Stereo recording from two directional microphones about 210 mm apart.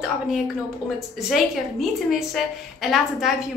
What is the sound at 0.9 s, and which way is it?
A woman's voice, centre (ahead or behind).